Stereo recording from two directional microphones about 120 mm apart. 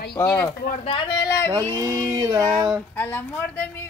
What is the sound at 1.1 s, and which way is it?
Speech, 25° left (ahead or behind).